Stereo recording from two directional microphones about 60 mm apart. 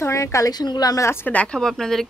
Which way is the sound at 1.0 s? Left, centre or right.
Left.